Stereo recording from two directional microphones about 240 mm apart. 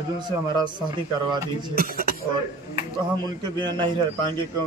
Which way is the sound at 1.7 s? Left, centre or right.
Right.